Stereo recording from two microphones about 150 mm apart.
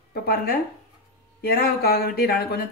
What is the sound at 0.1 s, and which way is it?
Speech, 90° left.